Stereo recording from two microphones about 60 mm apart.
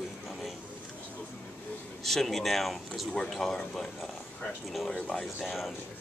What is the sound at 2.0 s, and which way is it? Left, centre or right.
Speech, centre.